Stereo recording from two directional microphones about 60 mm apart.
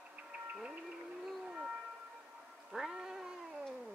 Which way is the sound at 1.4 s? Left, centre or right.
Centre.